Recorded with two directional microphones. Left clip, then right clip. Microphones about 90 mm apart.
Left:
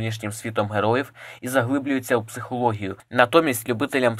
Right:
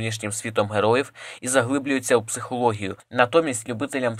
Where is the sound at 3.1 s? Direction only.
15° left (ahead or behind).